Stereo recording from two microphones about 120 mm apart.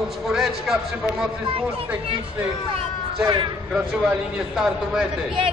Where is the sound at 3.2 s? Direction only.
40° right (ahead or behind).